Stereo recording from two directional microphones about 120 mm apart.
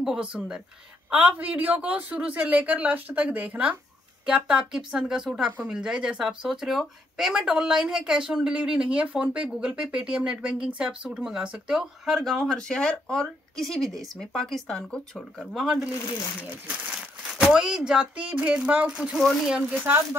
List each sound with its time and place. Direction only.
0.0 s speech: 5° right (ahead or behind)
17.4 s speech: 5° right (ahead or behind)
19.8 s speech: 15° right (ahead or behind)